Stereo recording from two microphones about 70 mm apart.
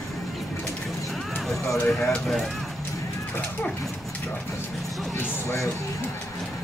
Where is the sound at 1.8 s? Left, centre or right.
Centre.